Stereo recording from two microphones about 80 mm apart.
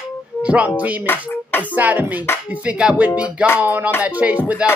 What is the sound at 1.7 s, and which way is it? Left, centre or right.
Music, right.